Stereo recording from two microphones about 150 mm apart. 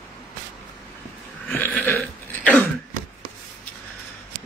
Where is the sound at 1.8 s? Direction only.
15° left (ahead or behind).